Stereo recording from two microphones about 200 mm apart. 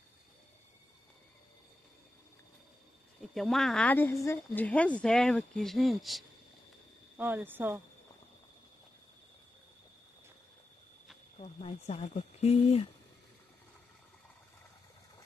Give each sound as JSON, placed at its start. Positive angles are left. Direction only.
{"t": 3.3, "sound": "speech", "side_deg": 0}
{"t": 11.3, "sound": "speech", "side_deg": 35}